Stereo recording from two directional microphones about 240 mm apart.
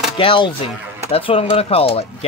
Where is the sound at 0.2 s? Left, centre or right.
Left.